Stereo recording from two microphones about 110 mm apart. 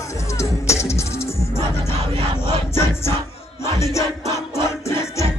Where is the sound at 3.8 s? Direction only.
25° left (ahead or behind).